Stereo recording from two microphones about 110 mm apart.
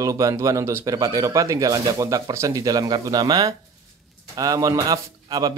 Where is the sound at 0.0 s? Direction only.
30° right (ahead or behind).